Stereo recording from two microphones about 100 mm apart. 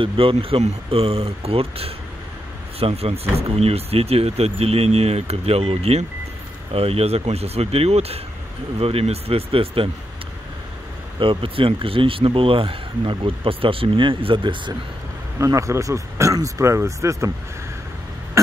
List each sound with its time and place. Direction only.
0.0 s speech: 65° right (ahead or behind)
2.8 s speech: 90° right
6.7 s speech: 80° right
8.7 s speech: 80° right
11.1 s speech: 60° right (ahead or behind)
15.3 s speech: 30° right (ahead or behind)